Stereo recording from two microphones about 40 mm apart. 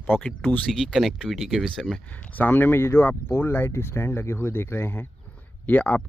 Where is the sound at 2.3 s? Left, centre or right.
Left.